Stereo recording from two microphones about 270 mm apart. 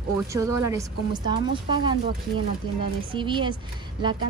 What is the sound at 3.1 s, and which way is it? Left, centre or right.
Speech, centre.